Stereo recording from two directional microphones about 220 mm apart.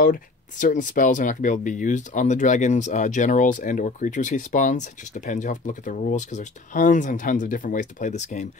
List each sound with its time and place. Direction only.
0.0 s speech: 40° left (ahead or behind)